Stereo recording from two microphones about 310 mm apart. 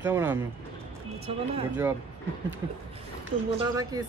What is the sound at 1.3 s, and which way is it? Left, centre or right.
Speech, centre.